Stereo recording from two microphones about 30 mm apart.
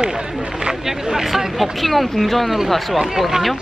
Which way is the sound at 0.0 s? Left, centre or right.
Right.